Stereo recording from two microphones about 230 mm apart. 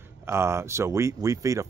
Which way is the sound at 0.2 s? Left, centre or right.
Centre.